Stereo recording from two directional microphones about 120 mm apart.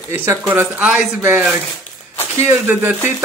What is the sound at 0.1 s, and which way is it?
Speech, 20° right (ahead or behind).